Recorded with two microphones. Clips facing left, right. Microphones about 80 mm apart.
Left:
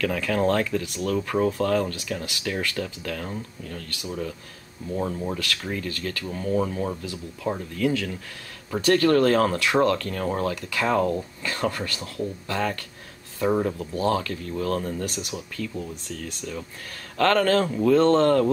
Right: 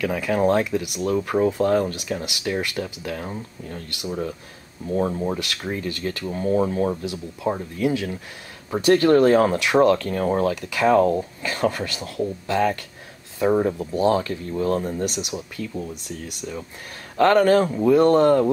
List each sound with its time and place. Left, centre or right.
0.0 s speech: centre